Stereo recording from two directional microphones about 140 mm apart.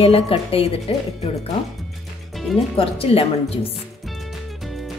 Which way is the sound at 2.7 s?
40° left (ahead or behind).